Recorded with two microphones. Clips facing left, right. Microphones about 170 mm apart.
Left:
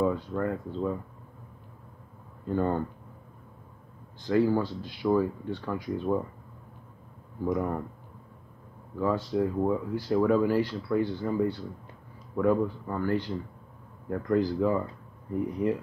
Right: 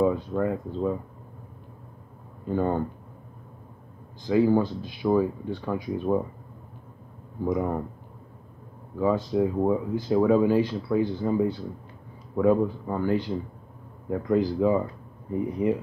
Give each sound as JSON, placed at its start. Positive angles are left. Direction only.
{"t": 0.0, "sound": "speech", "side_deg": -15}
{"t": 2.4, "sound": "speech", "side_deg": -10}
{"t": 4.2, "sound": "speech", "side_deg": -15}
{"t": 7.4, "sound": "speech", "side_deg": -15}
{"t": 8.9, "sound": "speech", "side_deg": -15}